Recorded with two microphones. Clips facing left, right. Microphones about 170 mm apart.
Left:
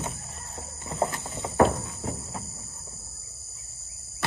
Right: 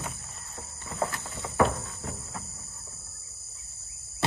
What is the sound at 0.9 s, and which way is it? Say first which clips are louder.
Insect: left 3 dB; 20° left (ahead or behind).